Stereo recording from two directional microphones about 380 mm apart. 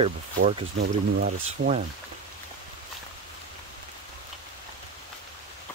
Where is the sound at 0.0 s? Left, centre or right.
Centre.